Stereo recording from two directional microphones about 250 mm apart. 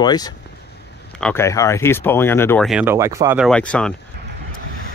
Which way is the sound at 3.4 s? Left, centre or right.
Centre.